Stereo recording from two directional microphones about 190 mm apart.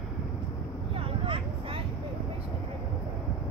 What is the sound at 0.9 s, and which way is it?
Vehicle, 30° right (ahead or behind).